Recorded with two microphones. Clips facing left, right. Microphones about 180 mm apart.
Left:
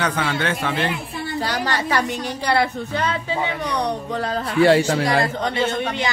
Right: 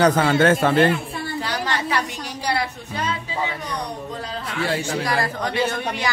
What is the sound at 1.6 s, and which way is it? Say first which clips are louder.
A woman's voice: left 3 dB; 40° left (ahead or behind).